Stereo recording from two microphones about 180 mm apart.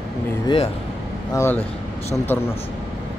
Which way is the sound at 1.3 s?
10° left (ahead or behind).